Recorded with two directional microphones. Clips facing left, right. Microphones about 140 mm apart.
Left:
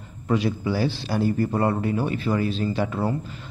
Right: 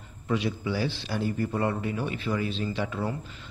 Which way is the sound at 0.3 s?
40° left (ahead or behind).